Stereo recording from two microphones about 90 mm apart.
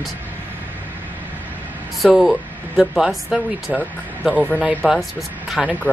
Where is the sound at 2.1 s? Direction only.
Centre (ahead or behind).